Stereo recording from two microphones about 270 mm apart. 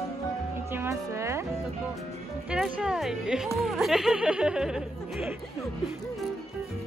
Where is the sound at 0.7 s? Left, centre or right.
Centre.